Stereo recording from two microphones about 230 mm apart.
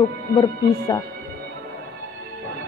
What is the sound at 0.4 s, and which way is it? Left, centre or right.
Speech, centre.